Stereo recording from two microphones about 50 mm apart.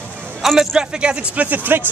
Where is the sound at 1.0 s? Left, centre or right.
Right.